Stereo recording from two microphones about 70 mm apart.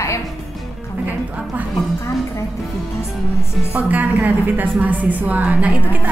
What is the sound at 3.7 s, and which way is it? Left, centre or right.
A woman's voice, right.